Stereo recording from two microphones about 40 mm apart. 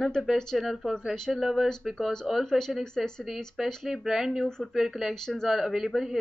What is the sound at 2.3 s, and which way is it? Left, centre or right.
Speech, centre.